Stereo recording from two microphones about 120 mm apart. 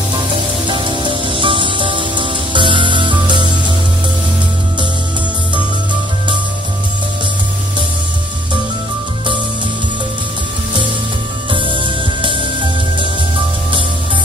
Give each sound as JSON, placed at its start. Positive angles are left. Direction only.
{"t": 0.7, "sound": "music", "side_deg": -45}
{"t": 11.5, "sound": "music", "side_deg": -45}